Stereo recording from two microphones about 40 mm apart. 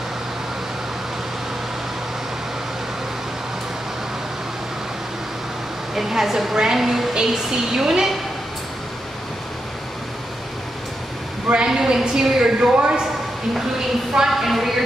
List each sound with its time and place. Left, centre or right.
5.9 s a woman's voice: centre
11.5 s a woman's voice: centre
14.2 s a woman's voice: centre